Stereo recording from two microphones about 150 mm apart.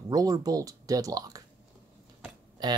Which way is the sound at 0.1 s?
25° right (ahead or behind).